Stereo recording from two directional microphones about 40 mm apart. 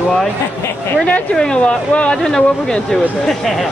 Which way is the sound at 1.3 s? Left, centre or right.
Centre.